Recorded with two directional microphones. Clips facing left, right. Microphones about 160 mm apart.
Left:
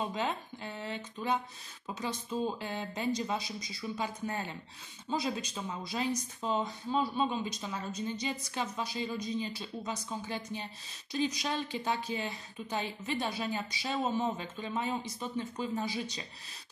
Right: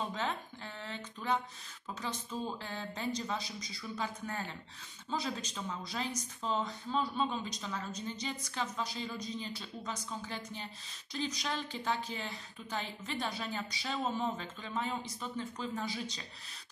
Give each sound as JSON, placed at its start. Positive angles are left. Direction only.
{"t": 0.0, "sound": "speech", "side_deg": 15}